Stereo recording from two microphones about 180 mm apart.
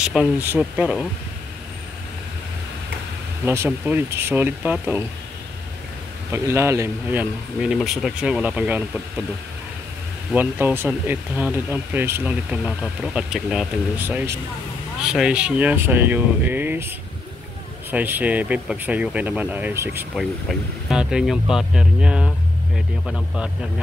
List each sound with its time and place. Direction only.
0.0 s speech: 5° right (ahead or behind)
3.4 s speech: 15° right (ahead or behind)
6.3 s speech: 15° right (ahead or behind)
10.3 s speech: 10° right (ahead or behind)
17.9 s speech: 10° right (ahead or behind)
20.2 s speech: 5° right (ahead or behind)